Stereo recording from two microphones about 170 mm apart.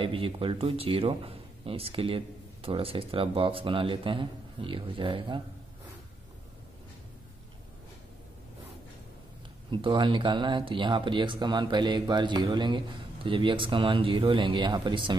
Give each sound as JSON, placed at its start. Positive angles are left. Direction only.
{"t": 0.0, "sound": "speech", "side_deg": -30}
{"t": 9.7, "sound": "speech", "side_deg": -30}